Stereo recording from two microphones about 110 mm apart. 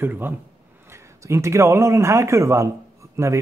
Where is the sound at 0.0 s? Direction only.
20° right (ahead or behind).